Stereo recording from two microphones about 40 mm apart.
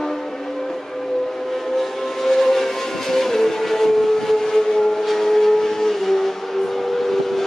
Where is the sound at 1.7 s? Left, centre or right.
Centre.